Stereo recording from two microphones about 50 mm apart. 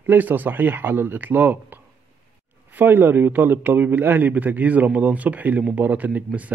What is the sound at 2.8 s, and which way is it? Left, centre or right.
A man's voice, right.